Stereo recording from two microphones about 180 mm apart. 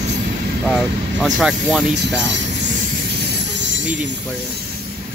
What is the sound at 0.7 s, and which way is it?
Speech, 5° right (ahead or behind).